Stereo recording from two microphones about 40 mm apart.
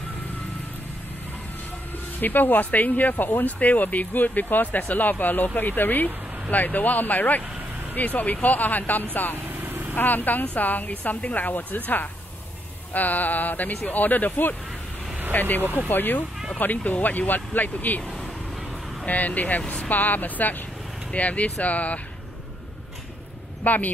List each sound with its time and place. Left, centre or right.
2.1 s speech: left
3.4 s speech: left
9.5 s vehicle: right
9.9 s speech: left
16.5 s speech: left
19.0 s speech: left
19.6 s speech: left
19.9 s speech: left
21.1 s speech: left
23.6 s speech: left